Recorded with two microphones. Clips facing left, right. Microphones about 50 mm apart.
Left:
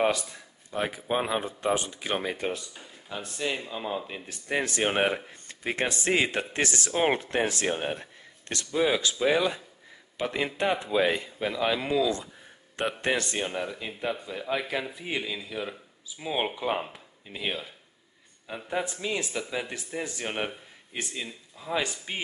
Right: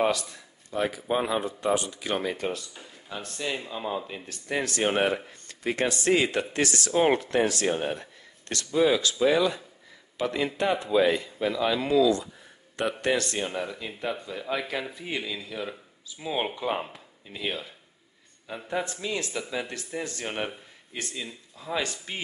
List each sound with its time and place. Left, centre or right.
0.1 s a man's voice: left
2.7 s a man's voice: centre; by 7.6 s left
7.6 s a man's voice: centre
13.5 s speech: centre